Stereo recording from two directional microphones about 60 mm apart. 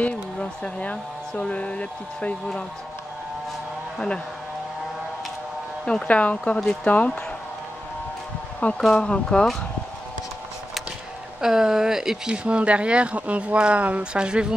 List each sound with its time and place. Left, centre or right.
0.0 s speech: left
5.9 s speech: centre
8.5 s speech: centre
11.4 s speech: centre
12.4 s speech: centre